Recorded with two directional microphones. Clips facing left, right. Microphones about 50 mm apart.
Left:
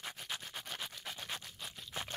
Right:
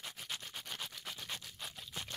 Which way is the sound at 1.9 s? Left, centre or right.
Left.